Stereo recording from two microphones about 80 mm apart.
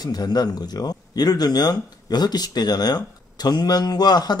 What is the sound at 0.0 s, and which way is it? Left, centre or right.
A woman's voice, left.